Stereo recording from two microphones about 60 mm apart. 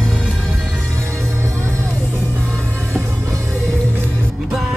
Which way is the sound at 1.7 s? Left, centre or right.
Left.